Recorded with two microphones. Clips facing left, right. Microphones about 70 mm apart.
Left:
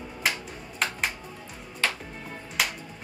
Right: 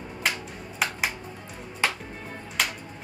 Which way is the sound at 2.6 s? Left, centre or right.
Centre.